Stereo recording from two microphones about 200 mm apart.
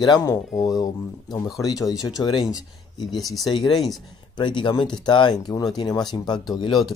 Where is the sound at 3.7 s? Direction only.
Centre (ahead or behind).